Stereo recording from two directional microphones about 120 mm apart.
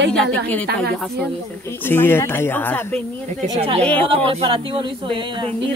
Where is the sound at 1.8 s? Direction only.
20° left (ahead or behind).